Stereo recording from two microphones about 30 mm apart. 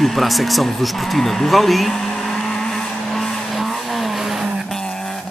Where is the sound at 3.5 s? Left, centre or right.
Centre.